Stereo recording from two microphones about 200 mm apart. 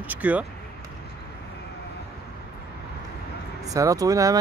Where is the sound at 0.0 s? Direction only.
10° right (ahead or behind).